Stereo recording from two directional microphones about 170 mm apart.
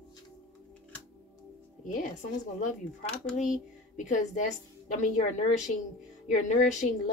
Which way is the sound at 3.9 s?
45° left (ahead or behind).